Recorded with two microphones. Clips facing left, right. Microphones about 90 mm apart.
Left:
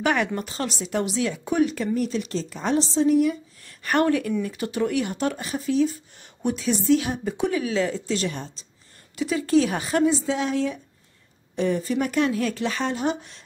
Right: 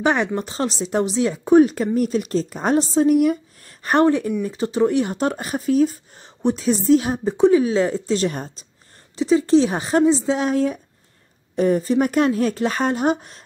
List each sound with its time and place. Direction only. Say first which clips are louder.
0.0 s speech: right 3 dB; 25° right (ahead or behind); by 3.3 s 50° right (ahead or behind)
3.6 s speech: right 5 dB; 35° right (ahead or behind)
9.1 s speech: right 5 dB; 25° right (ahead or behind); by 13.4 s 45° right (ahead or behind)